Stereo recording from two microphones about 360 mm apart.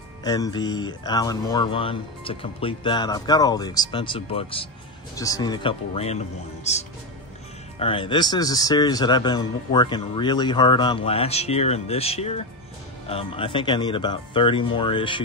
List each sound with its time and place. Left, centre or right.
0.2 s speech: centre